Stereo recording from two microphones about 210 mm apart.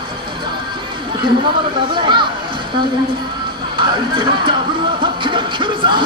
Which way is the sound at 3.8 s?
25° right (ahead or behind).